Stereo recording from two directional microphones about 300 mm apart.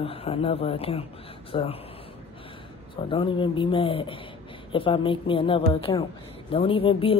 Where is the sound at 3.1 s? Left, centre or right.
Centre.